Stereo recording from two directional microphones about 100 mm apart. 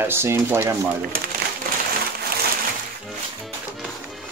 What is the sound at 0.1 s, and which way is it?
Speech, 25° right (ahead or behind).